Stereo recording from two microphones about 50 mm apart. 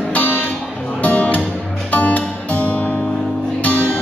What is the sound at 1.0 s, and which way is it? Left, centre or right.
Music, left.